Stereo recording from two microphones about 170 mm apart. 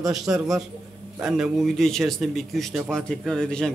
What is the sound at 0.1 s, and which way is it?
A man's voice, centre (ahead or behind).